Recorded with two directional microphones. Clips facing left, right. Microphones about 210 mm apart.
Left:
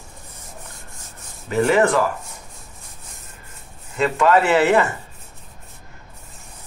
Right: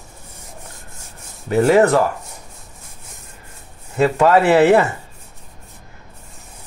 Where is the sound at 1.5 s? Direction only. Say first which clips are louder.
Right 4 dB; 40° right (ahead or behind).